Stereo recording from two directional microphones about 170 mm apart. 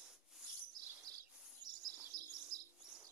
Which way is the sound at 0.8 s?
20° right (ahead or behind).